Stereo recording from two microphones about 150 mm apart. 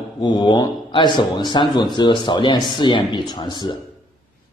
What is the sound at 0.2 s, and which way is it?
A man's voice, 30° left (ahead or behind).